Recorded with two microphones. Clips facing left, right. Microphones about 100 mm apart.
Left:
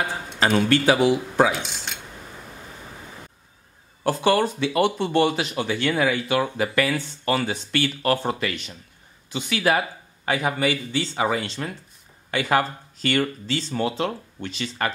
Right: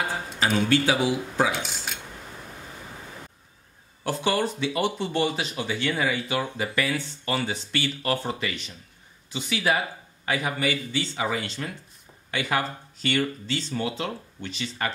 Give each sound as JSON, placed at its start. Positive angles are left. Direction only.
{"t": 0.7, "sound": "speech", "side_deg": 55}
{"t": 1.5, "sound": "a sound", "side_deg": 0}
{"t": 4.0, "sound": "speech", "side_deg": 60}
{"t": 10.2, "sound": "speech", "side_deg": 40}
{"t": 11.4, "sound": "speech", "side_deg": 30}
{"t": 12.3, "sound": "speech", "side_deg": 45}
{"t": 14.8, "sound": "speech", "side_deg": 60}